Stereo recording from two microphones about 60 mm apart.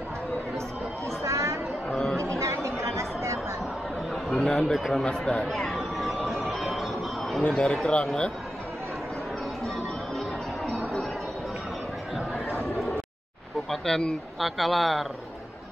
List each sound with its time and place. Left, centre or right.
1.0 s a sound: right
1.9 s chatter: centre
2.3 s chatter: right
4.1 s a man's voice: centre
5.0 s speech: centre
5.5 s train: centre
7.4 s speech: centre
13.7 s a sound: centre
14.4 s speech: centre